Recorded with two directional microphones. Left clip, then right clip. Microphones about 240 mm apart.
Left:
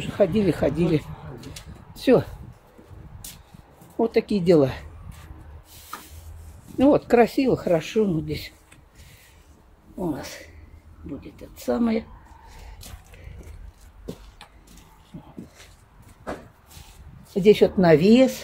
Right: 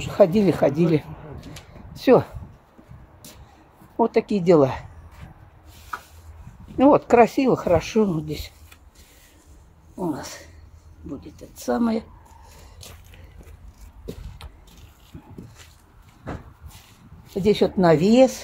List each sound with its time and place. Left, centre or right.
0.0 s speech: right
2.0 s a sound: centre
4.0 s speech: centre
6.8 s speech: centre
9.9 s speech: centre
17.3 s speech: centre